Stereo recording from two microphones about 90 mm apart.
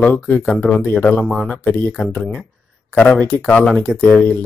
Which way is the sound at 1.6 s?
20° left (ahead or behind).